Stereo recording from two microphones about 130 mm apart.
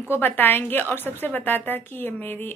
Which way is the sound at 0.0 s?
15° left (ahead or behind).